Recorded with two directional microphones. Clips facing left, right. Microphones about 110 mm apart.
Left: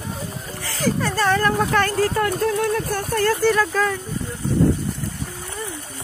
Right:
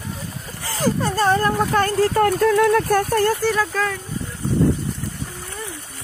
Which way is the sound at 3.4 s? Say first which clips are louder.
Left 2 dB; 5° right (ahead or behind).